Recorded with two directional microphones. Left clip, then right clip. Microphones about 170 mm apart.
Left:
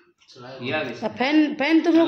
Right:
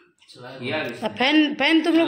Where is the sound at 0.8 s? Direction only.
10° left (ahead or behind).